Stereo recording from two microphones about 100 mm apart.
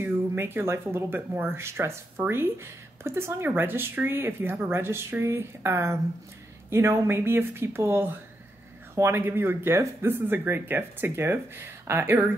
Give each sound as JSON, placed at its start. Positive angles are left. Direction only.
{"t": 0.0, "sound": "speech", "side_deg": -20}